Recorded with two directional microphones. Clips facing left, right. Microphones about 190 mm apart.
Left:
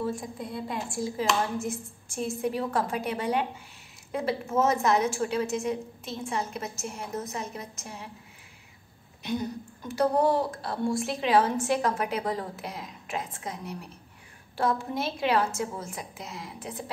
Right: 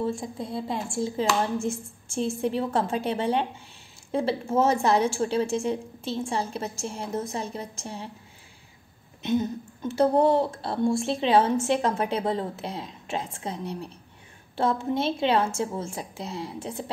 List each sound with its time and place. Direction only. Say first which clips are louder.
0.0 s speech: right 3 dB; 25° right (ahead or behind)
9.2 s speech: right 5 dB; 25° right (ahead or behind)